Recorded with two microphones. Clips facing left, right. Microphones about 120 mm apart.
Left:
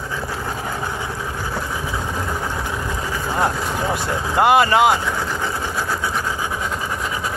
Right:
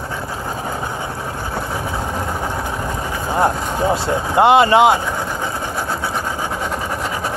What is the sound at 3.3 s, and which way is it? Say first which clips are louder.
Speech: right 4 dB; 20° right (ahead or behind).